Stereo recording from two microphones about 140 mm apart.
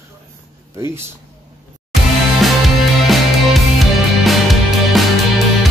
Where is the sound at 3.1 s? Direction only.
Centre (ahead or behind).